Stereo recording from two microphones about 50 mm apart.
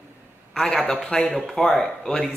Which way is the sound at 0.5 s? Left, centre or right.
Centre.